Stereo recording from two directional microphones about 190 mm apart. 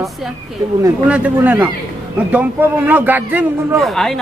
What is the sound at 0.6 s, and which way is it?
A man's voice, 15° right (ahead or behind).